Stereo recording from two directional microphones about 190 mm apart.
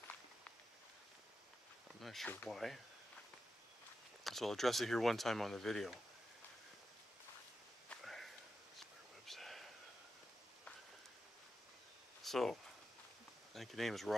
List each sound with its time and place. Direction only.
2.0 s speech: centre (ahead or behind)
4.2 s speech: centre (ahead or behind)
7.9 s sniff: centre (ahead or behind)
9.2 s whispering: centre (ahead or behind)
12.2 s a sound: centre (ahead or behind)
13.5 s speech: centre (ahead or behind)